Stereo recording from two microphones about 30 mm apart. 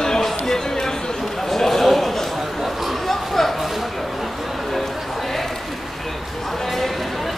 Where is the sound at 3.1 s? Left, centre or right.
Centre.